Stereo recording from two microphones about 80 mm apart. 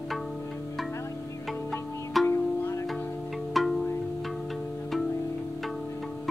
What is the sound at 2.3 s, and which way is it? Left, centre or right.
Music, left.